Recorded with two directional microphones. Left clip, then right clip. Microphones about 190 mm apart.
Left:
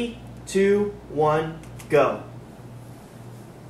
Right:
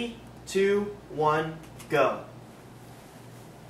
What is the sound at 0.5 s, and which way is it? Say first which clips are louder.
Speech: left 4 dB; 5° right (ahead or behind).